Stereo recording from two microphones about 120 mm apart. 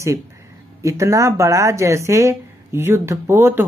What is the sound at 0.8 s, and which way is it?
Speech, 25° right (ahead or behind).